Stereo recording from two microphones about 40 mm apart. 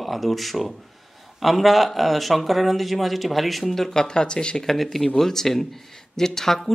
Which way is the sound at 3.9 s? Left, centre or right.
Centre.